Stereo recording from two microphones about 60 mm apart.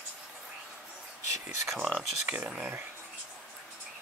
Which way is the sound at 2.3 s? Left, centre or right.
Centre.